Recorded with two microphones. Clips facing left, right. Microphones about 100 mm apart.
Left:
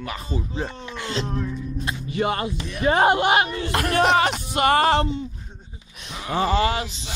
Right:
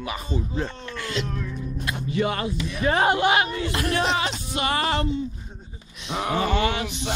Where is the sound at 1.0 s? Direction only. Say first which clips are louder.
Left 2 dB; 25° left (ahead or behind).